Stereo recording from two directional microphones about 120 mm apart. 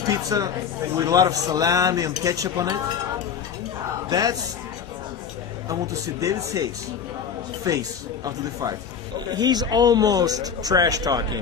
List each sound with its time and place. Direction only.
0.1 s speech: 30° right (ahead or behind)
4.1 s speech: 30° right (ahead or behind)
6.2 s speech: 30° right (ahead or behind)